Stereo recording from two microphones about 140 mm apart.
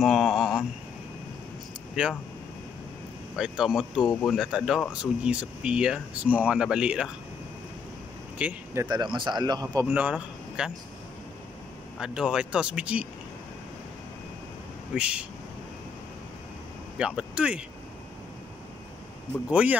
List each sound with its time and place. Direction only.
0.0 s a sound: 5° right (ahead or behind)
2.0 s speech: 5° right (ahead or behind)
3.3 s speech: 5° right (ahead or behind)
8.4 s speech: 10° right (ahead or behind)
8.8 s speech: 30° right (ahead or behind)
9.8 s a man's voice: 10° right (ahead or behind)
12.0 s speech: 5° right (ahead or behind)
15.0 s speech: 10° right (ahead or behind)
17.0 s speech: 5° right (ahead or behind)
19.5 s speech: 10° right (ahead or behind)